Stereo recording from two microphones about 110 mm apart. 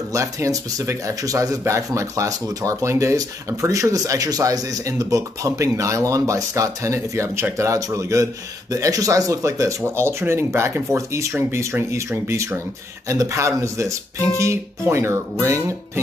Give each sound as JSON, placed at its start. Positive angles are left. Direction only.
{"t": 0.1, "sound": "speech", "side_deg": -30}